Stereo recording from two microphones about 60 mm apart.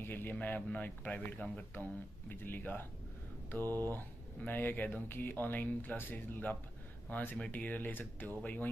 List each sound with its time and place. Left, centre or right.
0.0 s a man's voice: left